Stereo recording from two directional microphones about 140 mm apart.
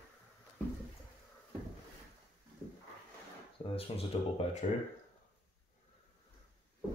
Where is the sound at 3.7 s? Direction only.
45° left (ahead or behind).